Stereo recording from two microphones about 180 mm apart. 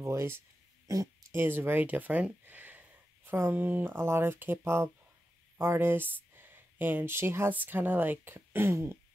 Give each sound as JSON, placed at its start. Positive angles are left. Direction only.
{"t": 0.0, "sound": "speech", "side_deg": -15}